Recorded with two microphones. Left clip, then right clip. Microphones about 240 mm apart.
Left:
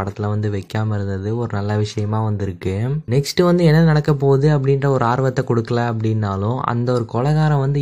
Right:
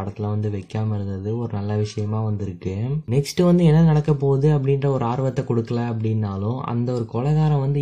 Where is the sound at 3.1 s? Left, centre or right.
Left.